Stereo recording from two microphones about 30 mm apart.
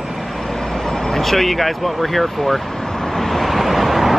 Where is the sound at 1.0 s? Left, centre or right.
Centre.